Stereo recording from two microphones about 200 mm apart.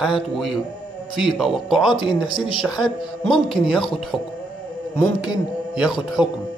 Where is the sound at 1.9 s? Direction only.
25° left (ahead or behind).